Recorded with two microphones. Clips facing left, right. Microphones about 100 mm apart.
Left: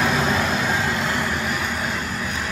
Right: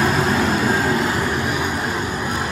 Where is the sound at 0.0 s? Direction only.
5° right (ahead or behind).